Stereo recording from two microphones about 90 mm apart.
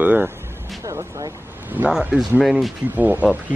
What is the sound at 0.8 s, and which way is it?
Speech, 35° right (ahead or behind).